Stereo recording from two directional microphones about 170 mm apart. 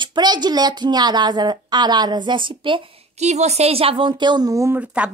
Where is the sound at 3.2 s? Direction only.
40° right (ahead or behind); by 5.1 s 10° right (ahead or behind).